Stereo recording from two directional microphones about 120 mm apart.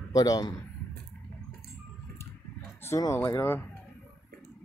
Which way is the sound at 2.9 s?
30° left (ahead or behind).